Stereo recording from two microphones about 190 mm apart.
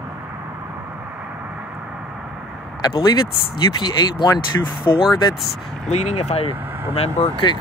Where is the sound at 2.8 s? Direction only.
25° left (ahead or behind).